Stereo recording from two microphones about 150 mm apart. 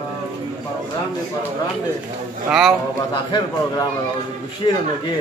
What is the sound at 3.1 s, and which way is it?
A man's voice, 30° left (ahead or behind).